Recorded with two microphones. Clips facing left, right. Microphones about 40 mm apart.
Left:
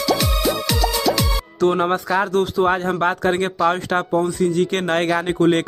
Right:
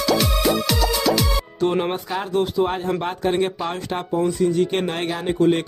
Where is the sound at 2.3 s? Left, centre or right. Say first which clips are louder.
Right 1 dB; left.